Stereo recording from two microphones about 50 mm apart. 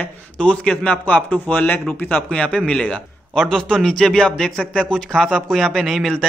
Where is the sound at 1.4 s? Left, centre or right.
Left.